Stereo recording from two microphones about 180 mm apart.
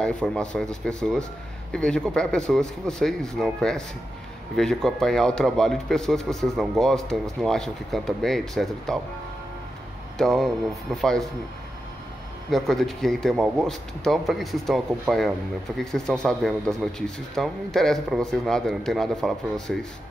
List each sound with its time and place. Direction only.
0.0 s a man's voice: 5° left (ahead or behind)
10.1 s a man's voice: centre (ahead or behind)
12.4 s a man's voice: centre (ahead or behind)